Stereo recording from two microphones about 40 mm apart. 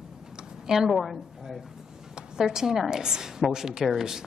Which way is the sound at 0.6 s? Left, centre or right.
Centre.